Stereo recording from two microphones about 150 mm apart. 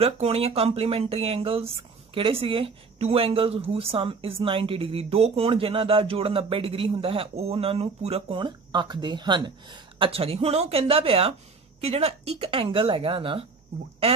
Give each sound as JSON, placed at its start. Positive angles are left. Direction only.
{"t": 0.0, "sound": "speech", "side_deg": -40}